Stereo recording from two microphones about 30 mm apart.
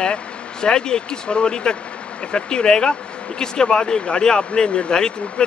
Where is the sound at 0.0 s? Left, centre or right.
Left.